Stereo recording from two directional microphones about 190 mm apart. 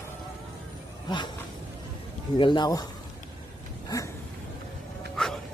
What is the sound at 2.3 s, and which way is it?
Speech, 25° left (ahead or behind).